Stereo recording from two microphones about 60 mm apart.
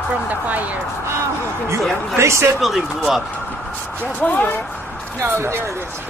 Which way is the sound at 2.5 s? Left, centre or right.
Centre.